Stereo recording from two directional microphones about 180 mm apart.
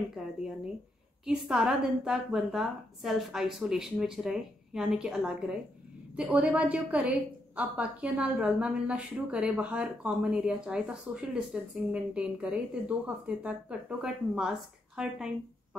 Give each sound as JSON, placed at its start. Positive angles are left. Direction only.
{"t": 1.2, "sound": "a woman's voice", "side_deg": -5}